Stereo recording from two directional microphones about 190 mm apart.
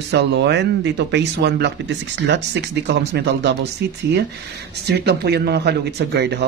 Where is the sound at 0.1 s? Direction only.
65° right (ahead or behind).